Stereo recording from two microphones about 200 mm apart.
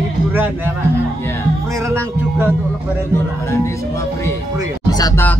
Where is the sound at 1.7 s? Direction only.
15° right (ahead or behind).